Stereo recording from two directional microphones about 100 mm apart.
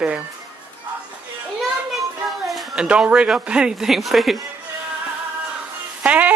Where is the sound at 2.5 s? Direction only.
Centre (ahead or behind).